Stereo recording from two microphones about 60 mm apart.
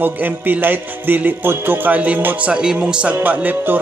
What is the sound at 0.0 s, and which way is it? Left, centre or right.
Music, right.